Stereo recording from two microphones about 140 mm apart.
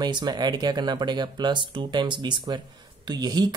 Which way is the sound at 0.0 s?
30° right (ahead or behind).